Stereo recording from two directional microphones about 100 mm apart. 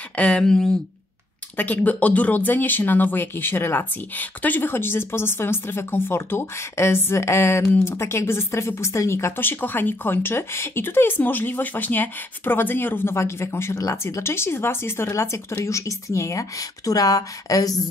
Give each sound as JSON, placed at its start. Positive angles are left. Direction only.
{"t": 0.1, "sound": "speech", "side_deg": 10}